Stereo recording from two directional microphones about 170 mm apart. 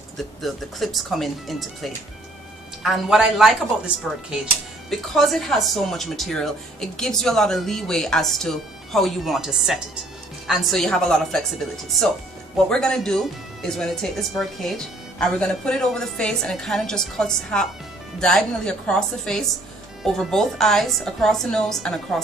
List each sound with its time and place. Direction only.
0.4 s speech: centre (ahead or behind)